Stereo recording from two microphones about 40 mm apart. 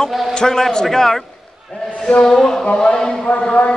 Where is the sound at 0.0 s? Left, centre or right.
Centre.